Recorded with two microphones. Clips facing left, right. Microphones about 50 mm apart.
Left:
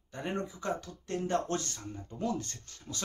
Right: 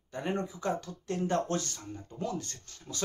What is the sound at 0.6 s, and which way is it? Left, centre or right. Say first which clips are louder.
Speech: right 2 dB; centre.